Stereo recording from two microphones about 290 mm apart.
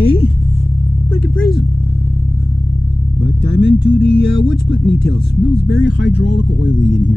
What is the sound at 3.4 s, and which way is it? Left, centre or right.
Speech, left.